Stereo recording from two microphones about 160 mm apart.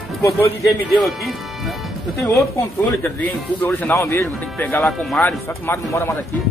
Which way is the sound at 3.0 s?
10° left (ahead or behind).